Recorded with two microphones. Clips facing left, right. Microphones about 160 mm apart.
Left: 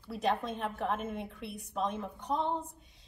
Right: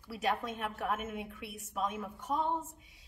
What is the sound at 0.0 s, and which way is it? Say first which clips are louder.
A woman's voice: left 2 dB; 5° right (ahead or behind).